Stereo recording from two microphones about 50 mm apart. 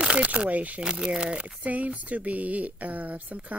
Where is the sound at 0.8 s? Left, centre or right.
Centre.